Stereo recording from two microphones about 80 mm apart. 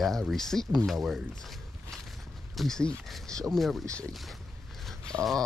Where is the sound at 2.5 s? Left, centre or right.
Centre.